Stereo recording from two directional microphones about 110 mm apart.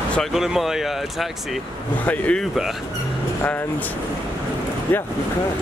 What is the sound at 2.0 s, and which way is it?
Speech, 10° left (ahead or behind).